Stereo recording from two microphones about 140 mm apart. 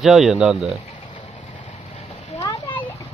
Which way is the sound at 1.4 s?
40° left (ahead or behind).